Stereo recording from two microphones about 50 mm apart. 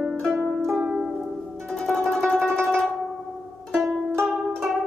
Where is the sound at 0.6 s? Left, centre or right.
Centre.